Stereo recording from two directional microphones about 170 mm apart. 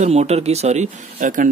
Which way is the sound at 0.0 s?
40° right (ahead or behind).